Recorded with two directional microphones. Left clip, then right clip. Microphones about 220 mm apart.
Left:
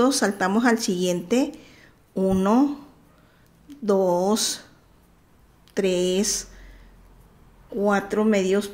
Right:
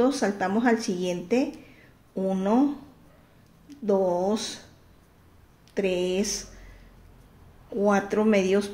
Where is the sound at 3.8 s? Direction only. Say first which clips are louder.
Left 3 dB; 25° left (ahead or behind).